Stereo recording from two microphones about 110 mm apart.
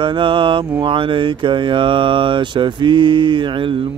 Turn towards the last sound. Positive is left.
turn(degrees=-50)  # may be behind; listen again after turning